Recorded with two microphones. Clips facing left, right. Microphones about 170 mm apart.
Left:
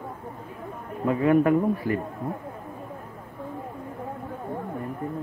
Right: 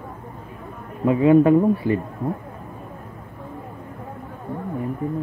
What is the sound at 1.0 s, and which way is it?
Speech, 20° right (ahead or behind).